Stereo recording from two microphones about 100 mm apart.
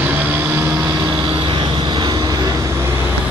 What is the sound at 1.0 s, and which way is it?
Vehicle, 50° right (ahead or behind).